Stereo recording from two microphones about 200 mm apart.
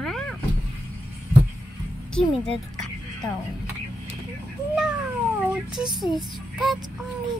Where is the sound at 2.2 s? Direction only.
30° left (ahead or behind).